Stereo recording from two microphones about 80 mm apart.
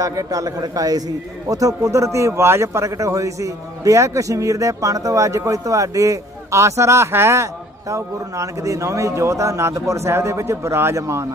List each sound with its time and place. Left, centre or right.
0.0 s a man's voice: right